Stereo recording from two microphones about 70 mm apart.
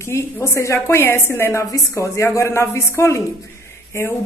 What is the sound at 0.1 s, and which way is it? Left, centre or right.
A woman's voice, left.